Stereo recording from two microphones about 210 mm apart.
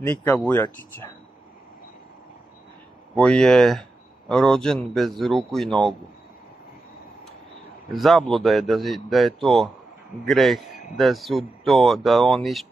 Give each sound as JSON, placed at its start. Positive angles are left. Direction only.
{"t": 0.0, "sound": "speech", "side_deg": 5}
{"t": 3.2, "sound": "a man's voice", "side_deg": 5}
{"t": 8.0, "sound": "a man's voice", "side_deg": 0}